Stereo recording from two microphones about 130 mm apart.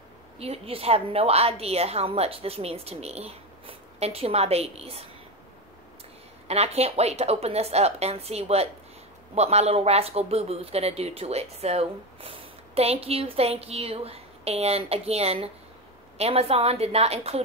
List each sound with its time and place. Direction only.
0.4 s speech: 50° right (ahead or behind)
6.4 s speech: 55° right (ahead or behind)